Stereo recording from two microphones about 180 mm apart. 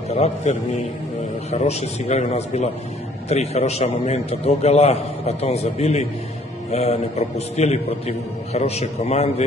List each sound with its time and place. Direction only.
0.1 s a man's voice: 35° left (ahead or behind)